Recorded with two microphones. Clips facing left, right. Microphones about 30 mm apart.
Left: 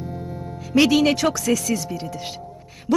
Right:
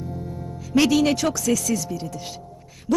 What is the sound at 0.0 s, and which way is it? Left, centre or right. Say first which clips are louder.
Speech: left 1 dB; left.